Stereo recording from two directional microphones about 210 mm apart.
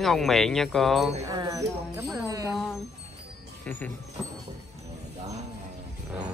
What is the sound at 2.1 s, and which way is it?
Music, 15° right (ahead or behind).